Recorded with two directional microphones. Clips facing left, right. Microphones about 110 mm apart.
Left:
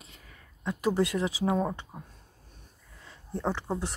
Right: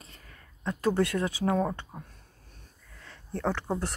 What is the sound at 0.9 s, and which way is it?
Speech, 25° left (ahead or behind).